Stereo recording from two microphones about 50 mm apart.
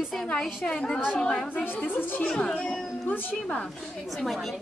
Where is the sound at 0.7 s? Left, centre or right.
Centre.